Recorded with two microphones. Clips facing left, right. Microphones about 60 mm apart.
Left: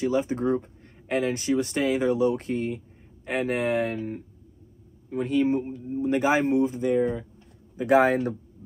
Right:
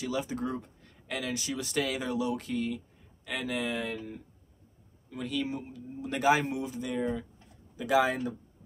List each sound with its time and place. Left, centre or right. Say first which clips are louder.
0.0 s speech: left 8 dB; left
5.1 s speech: left 10 dB; left
7.7 s speech: left 7 dB; left